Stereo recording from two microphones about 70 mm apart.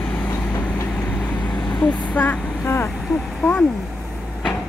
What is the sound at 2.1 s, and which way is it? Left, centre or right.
Vehicle, left.